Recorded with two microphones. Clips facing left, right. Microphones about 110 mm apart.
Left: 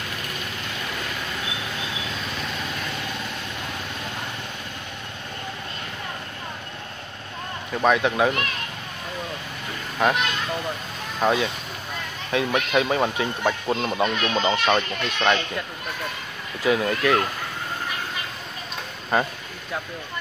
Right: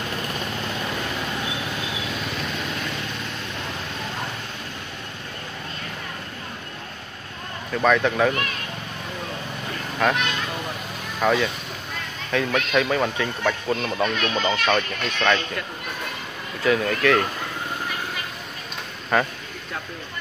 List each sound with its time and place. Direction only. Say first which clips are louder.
7.8 s speech: even; 15° left (ahead or behind)
10.0 s speech: left 1 dB; 15° left (ahead or behind)
16.6 s speech: right 1 dB; 20° left (ahead or behind)